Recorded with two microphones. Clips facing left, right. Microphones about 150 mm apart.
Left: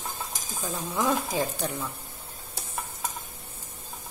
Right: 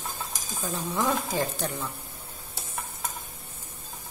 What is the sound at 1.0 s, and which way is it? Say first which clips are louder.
Speech: left 2 dB; 5° left (ahead or behind).